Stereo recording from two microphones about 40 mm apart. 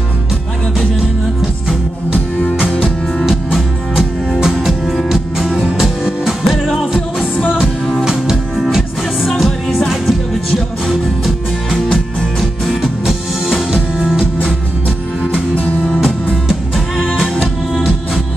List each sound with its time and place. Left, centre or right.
3.3 s music: centre
7.6 s music: centre
8.0 s music: centre
9.3 s music: centre
15.5 s music: left
16.4 s music: centre